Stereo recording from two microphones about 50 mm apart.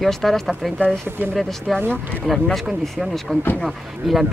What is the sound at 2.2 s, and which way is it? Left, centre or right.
Speech, centre.